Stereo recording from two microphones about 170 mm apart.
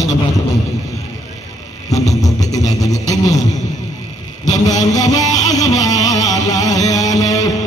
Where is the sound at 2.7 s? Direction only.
20° left (ahead or behind).